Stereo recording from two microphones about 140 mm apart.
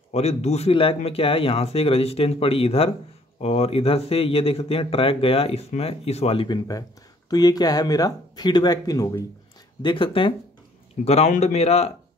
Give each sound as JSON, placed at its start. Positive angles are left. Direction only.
{"t": 0.1, "sound": "speech", "side_deg": 50}
{"t": 9.8, "sound": "speech", "side_deg": 35}
{"t": 11.1, "sound": "speech", "side_deg": 50}